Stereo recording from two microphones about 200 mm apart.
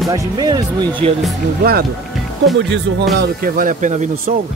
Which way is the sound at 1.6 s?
50° right (ahead or behind).